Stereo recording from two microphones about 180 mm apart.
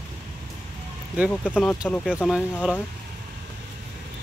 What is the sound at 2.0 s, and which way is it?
Speech, 5° right (ahead or behind).